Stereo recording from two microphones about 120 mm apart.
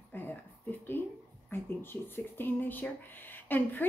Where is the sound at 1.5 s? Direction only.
20° left (ahead or behind).